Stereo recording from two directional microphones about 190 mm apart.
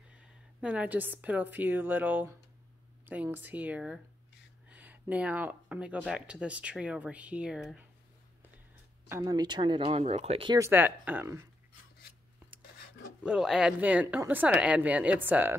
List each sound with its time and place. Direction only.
0.1 s a woman's voice: 5° right (ahead or behind)
9.1 s speech: 20° right (ahead or behind)
10.6 s speech: 10° right (ahead or behind)
13.2 s speech: 5° right (ahead or behind)